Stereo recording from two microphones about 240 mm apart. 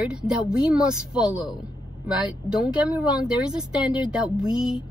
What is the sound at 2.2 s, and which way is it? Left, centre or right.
A woman's voice, centre.